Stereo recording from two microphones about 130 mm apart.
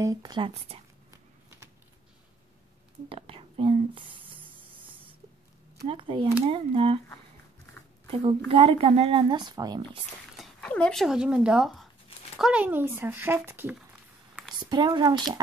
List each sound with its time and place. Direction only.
0.0 s speech: 30° right (ahead or behind)
0.7 s speech: 50° right (ahead or behind)
3.1 s speech: 45° right (ahead or behind)
5.9 s speech: 40° right (ahead or behind)
8.5 s speech: 45° right (ahead or behind)
10.3 s a sound: centre (ahead or behind)
10.7 s speech: 5° left (ahead or behind); by 13.7 s 15° right (ahead or behind)
14.7 s speech: 35° right (ahead or behind)